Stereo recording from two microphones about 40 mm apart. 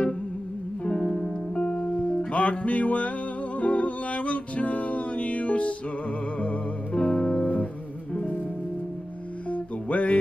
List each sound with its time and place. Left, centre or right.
0.8 s music: left
9.5 s music: left